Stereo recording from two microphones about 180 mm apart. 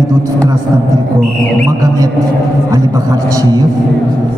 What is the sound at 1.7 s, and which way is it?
Speech, 20° right (ahead or behind).